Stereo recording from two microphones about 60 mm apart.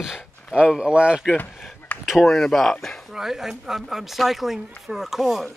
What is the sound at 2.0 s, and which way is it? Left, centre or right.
Speech, centre.